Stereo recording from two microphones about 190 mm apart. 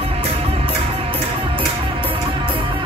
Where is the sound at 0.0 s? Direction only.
30° right (ahead or behind).